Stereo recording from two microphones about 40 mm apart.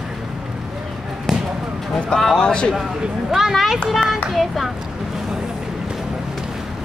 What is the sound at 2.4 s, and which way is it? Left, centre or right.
Speech, left.